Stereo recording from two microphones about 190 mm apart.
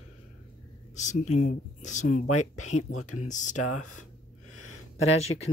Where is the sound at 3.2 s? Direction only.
40° left (ahead or behind).